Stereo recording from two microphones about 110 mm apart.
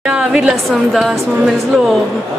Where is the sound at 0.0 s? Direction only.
5° right (ahead or behind).